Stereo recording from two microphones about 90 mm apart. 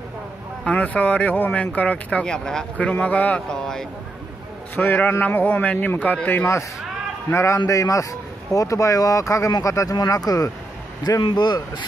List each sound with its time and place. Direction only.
0.7 s speech: 15° left (ahead or behind)
4.7 s a man's voice: 20° left (ahead or behind); by 10.5 s 40° left (ahead or behind)
11.1 s speech: 55° left (ahead or behind)